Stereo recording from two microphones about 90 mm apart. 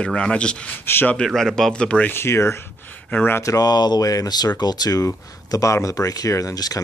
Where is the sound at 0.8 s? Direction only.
25° left (ahead or behind).